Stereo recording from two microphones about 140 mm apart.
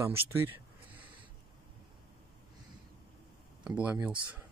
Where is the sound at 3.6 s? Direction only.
10° right (ahead or behind).